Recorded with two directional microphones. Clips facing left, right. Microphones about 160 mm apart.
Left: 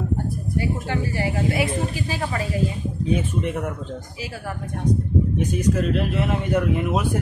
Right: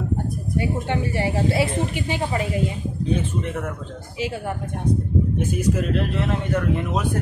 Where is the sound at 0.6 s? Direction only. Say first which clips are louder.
Right 2 dB; 25° right (ahead or behind).